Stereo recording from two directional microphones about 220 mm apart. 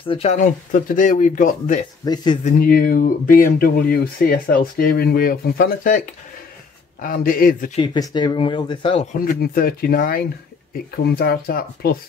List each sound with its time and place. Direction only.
0.1 s speech: 30° left (ahead or behind)
7.7 s speech: 20° left (ahead or behind)
9.2 s speech: 40° left (ahead or behind)